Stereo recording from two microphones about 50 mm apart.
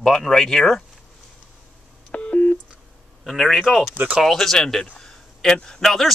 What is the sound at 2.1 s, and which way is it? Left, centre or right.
Telephone dialing, left.